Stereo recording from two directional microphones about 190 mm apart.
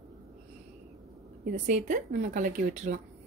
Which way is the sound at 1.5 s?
45° right (ahead or behind).